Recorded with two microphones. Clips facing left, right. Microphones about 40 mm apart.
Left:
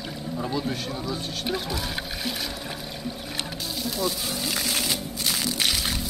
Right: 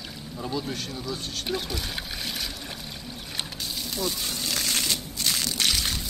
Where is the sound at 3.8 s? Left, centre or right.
Centre.